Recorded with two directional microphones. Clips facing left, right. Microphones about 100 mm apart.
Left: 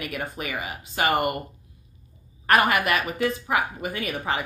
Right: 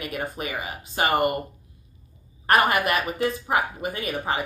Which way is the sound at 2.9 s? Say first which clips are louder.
Even; 35° right (ahead or behind).